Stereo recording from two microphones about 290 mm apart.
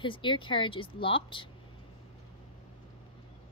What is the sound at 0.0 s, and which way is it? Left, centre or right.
Speech, centre.